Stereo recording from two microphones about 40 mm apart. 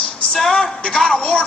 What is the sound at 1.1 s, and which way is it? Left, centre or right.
Speech, left.